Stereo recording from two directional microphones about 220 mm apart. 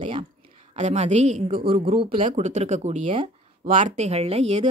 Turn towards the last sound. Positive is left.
turn(degrees=-30)  # may be behind; listen again after turning